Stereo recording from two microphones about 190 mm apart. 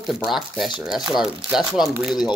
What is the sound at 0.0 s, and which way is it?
Speech, centre (ahead or behind).